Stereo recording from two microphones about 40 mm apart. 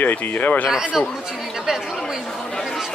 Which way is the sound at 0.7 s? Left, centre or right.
Centre.